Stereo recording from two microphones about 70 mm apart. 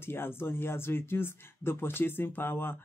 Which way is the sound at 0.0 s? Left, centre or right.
Left.